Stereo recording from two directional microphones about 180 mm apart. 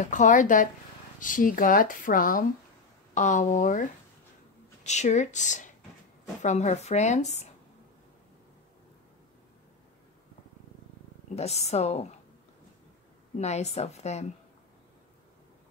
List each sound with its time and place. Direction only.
0.0 s speech: 45° left (ahead or behind)
4.8 s speech: 40° left (ahead or behind)
11.3 s speech: 35° left (ahead or behind)
13.4 s speech: 40° left (ahead or behind)